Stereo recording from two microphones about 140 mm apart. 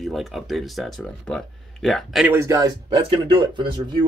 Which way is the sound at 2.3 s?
20° right (ahead or behind).